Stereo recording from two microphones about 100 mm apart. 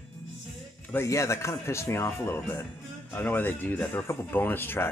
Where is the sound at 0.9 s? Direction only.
30° left (ahead or behind).